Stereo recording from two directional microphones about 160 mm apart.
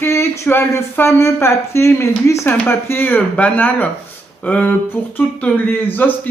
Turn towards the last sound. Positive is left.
turn(degrees=10)  # may be behind; listen again after turning